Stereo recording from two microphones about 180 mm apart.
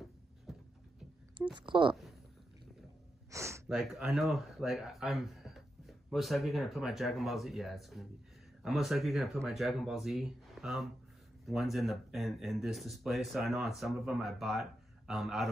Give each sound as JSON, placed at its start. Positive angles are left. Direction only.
{"t": 0.5, "sound": "a sound", "side_deg": 0}
{"t": 1.5, "sound": "speech", "side_deg": -25}
{"t": 3.3, "sound": "gasp", "side_deg": -15}
{"t": 3.6, "sound": "speech", "side_deg": 0}